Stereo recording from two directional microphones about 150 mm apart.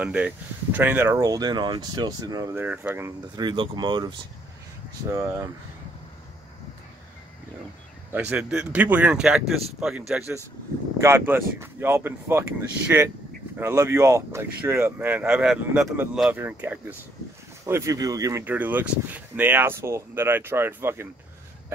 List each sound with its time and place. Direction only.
0.0 s speech: 10° right (ahead or behind); by 2.4 s 25° right (ahead or behind)
2.5 s speech: 15° right (ahead or behind)
3.3 s speech: 30° right (ahead or behind)
5.1 s speech: 20° right (ahead or behind)
8.1 s speech: 10° right (ahead or behind)
11.0 s speech: 15° right (ahead or behind)
18.4 s speech: 10° right (ahead or behind)